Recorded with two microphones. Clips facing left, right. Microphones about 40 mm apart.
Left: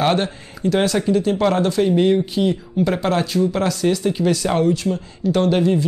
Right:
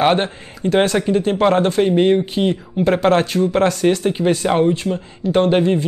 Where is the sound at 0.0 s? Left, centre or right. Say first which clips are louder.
Right 3 dB; right.